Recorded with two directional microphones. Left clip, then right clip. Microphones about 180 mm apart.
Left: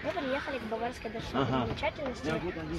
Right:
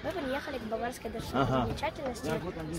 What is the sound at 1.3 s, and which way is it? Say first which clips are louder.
Speech: right 2 dB; 60° right (ahead or behind).